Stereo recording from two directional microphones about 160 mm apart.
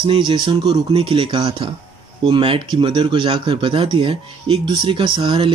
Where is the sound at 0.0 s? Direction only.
30° right (ahead or behind).